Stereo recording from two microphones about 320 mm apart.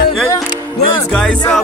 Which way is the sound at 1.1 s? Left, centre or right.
Centre.